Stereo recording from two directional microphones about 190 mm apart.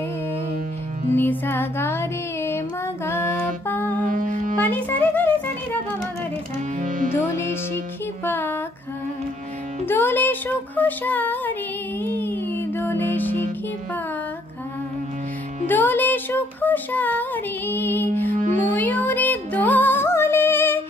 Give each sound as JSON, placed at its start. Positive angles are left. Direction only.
{"t": 1.1, "sound": "music", "side_deg": 10}
{"t": 4.0, "sound": "music", "side_deg": -45}
{"t": 4.6, "sound": "music", "side_deg": 10}
{"t": 6.8, "sound": "music", "side_deg": -45}
{"t": 8.3, "sound": "a sound", "side_deg": 10}
{"t": 9.8, "sound": "music", "side_deg": 10}
{"t": 10.8, "sound": "a sound", "side_deg": 10}
{"t": 12.0, "sound": "music", "side_deg": 10}
{"t": 15.6, "sound": "speech", "side_deg": 10}
{"t": 18.4, "sound": "music", "side_deg": -40}
{"t": 18.8, "sound": "music", "side_deg": 10}